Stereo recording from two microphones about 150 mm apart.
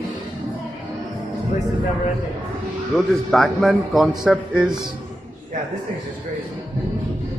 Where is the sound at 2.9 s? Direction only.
5° left (ahead or behind).